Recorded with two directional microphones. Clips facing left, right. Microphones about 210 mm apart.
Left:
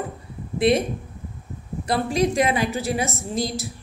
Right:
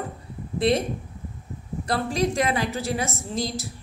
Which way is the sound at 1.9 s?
15° left (ahead or behind).